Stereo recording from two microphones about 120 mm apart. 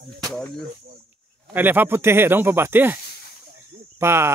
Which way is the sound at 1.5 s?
15° right (ahead or behind).